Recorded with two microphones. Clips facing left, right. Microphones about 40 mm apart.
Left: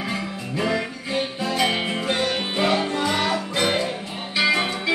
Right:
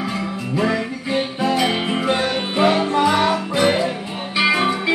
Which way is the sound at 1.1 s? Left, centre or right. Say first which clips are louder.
Right 5 dB; right.